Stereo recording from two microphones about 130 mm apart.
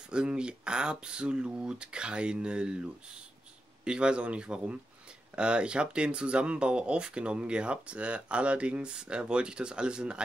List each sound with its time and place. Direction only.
0.1 s speech: 5° right (ahead or behind)
3.8 s speech: 5° right (ahead or behind)